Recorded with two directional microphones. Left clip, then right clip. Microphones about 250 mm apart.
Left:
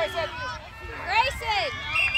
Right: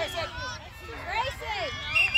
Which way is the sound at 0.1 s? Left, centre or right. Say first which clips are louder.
Left 4 dB; centre.